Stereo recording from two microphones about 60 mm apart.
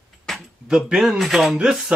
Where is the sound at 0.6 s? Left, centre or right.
Centre.